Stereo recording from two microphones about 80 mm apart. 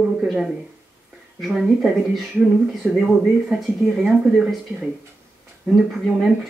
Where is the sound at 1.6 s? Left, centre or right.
Centre.